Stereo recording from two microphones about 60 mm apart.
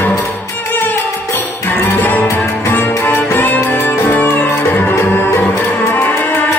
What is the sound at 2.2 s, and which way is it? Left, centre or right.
Music, left.